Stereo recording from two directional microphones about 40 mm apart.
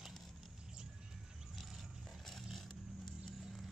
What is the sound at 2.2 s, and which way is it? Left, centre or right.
Vehicle, centre.